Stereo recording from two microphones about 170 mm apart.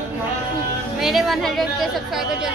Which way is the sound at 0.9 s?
Centre (ahead or behind).